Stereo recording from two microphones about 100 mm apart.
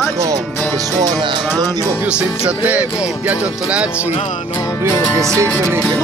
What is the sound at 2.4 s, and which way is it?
Music, 15° right (ahead or behind).